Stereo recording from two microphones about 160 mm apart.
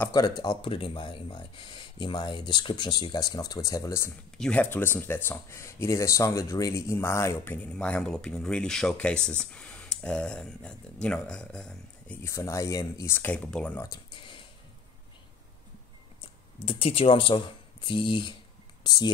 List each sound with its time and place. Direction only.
0.1 s speech: 25° left (ahead or behind)
4.4 s speech: 10° left (ahead or behind)
12.2 s speech: 20° left (ahead or behind)
13.8 s speech: 30° left (ahead or behind)
16.6 s speech: 35° left (ahead or behind)